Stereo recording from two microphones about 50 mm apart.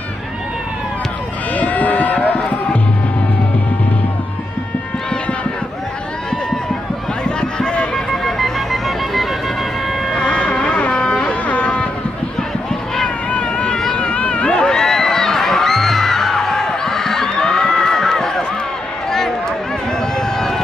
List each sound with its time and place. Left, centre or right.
1.5 s music: left
7.2 s run: centre
7.9 s music: centre
10.1 s a sound: left
13.3 s vehicle: left
13.9 s a sound: left; by 19.3 s centre
20.0 s run: centre